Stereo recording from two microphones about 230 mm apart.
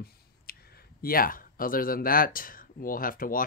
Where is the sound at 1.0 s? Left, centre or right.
Left.